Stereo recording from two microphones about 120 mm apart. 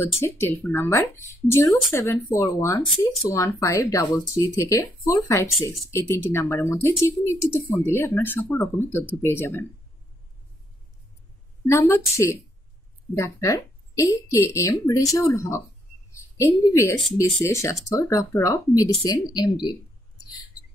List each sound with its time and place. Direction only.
0.0 s speech: 20° left (ahead or behind)
11.6 s speech: 20° left (ahead or behind)